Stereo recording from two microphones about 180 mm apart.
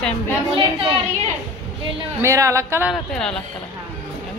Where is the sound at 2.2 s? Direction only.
15° right (ahead or behind).